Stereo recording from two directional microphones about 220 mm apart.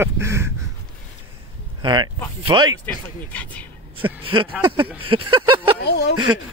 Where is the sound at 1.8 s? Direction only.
20° right (ahead or behind).